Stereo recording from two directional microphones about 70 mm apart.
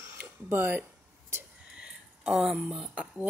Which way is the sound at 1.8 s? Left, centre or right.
Centre.